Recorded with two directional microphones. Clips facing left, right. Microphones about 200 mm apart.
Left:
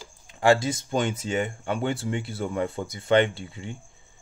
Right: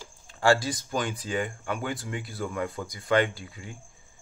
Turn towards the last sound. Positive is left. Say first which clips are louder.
# left 4 dB
turn(degrees=25)  # may be behind; listen again after turning